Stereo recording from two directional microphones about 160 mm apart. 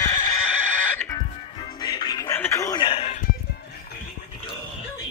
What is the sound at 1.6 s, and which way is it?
Music, 25° left (ahead or behind).